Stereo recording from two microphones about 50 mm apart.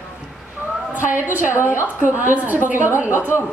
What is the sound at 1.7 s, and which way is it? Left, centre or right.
Speech, left.